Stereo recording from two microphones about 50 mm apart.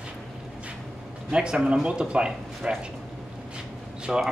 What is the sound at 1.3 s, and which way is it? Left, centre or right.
Speech, centre.